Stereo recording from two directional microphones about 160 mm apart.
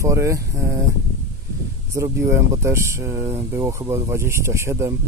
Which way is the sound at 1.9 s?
20° right (ahead or behind).